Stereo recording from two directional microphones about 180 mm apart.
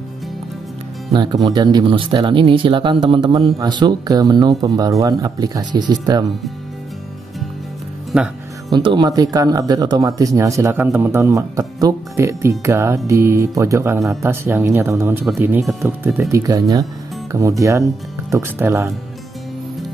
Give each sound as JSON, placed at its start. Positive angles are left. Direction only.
{"t": 1.1, "sound": "speech", "side_deg": -25}
{"t": 8.1, "sound": "music", "side_deg": -5}
{"t": 8.7, "sound": "speech", "side_deg": -25}